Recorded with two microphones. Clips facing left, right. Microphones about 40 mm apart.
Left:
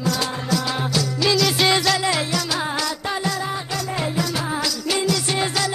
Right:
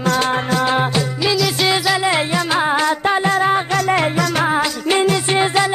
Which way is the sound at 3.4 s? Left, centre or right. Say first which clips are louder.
Right 10 dB; right.